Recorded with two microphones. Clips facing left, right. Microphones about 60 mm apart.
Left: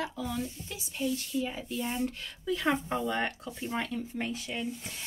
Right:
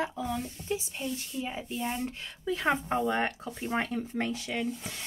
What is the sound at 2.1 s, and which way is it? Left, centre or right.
Speech, right.